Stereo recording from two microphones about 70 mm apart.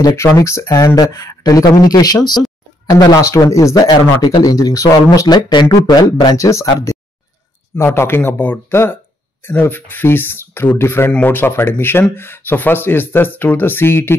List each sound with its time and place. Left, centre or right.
0.2 s speech: left
1.4 s speech: left
2.9 s speech: left
3.7 s speech: left
6.3 s speech: left
7.7 s speech: left